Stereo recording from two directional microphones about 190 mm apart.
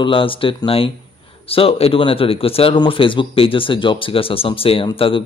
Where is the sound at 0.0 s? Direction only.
25° left (ahead or behind).